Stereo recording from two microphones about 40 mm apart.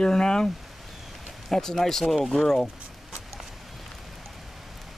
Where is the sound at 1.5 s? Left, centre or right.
Centre.